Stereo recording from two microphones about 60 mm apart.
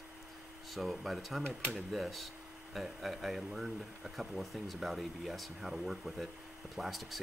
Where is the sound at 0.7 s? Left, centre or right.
Centre.